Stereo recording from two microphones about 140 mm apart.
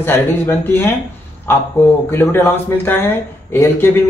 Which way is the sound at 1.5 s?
15° left (ahead or behind).